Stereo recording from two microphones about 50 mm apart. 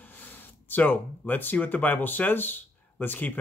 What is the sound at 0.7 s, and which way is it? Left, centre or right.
Speech, left.